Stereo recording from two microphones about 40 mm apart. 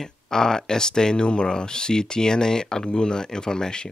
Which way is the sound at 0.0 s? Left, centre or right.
Centre.